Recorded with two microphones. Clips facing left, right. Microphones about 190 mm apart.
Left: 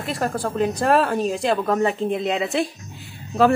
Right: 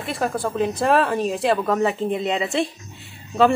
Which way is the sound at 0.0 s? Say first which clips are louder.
Even; centre (ahead or behind).